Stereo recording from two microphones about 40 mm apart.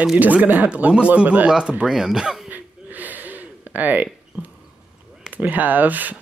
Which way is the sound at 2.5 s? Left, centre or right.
Right.